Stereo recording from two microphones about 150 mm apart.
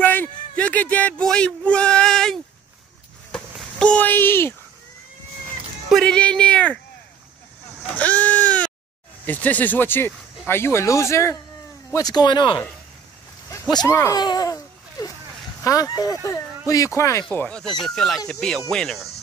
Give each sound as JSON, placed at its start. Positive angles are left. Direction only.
{"t": 0.0, "sound": "a sound", "side_deg": 10}
{"t": 5.9, "sound": "speech", "side_deg": 5}
{"t": 7.8, "sound": "goat", "side_deg": 10}
{"t": 9.2, "sound": "speech", "side_deg": 10}
{"t": 13.5, "sound": "a sound", "side_deg": 25}
{"t": 15.6, "sound": "speech", "side_deg": 25}
{"t": 17.3, "sound": "speech", "side_deg": 10}